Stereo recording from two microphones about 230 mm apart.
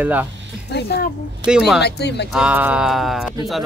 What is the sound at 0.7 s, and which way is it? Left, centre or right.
Speech, left.